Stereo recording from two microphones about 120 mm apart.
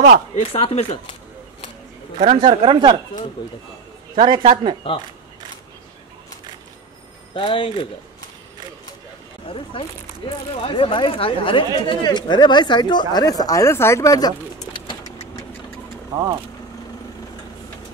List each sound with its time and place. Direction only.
0.5 s speech: 50° left (ahead or behind)
2.1 s speech: 60° right (ahead or behind)
2.5 s speech: 40° right (ahead or behind)
4.1 s a man's voice: 45° right (ahead or behind)
4.9 s speech: 50° left (ahead or behind)
7.3 s speech: 50° left (ahead or behind)
9.5 s speech: 50° left (ahead or behind)